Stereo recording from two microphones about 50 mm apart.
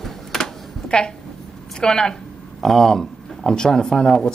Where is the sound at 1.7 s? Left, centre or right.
Centre.